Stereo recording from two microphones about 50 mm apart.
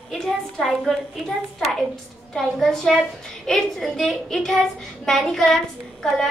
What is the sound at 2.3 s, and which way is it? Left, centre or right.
A woman's voice, centre.